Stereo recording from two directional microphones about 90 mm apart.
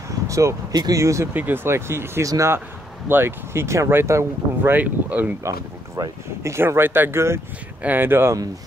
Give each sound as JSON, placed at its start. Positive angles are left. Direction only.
{"t": 0.3, "sound": "speech", "side_deg": -35}
{"t": 0.7, "sound": "speech", "side_deg": -45}
{"t": 1.0, "sound": "speech", "side_deg": -35}
{"t": 1.3, "sound": "speech", "side_deg": -20}
{"t": 4.7, "sound": "speech", "side_deg": -20}
{"t": 5.4, "sound": "speech", "side_deg": -40}